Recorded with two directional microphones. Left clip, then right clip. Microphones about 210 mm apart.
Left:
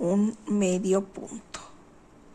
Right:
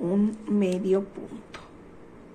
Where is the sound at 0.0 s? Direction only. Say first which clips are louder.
Left 1 dB; 30° left (ahead or behind).